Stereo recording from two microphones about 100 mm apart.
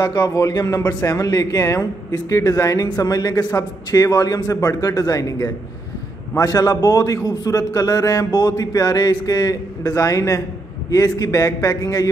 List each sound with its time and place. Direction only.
0.0 s speech: 40° left (ahead or behind)